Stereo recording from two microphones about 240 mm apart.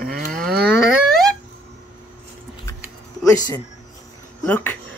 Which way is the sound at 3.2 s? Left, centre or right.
Centre.